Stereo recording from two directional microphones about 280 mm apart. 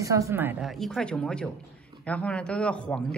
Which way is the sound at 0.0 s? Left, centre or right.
Centre.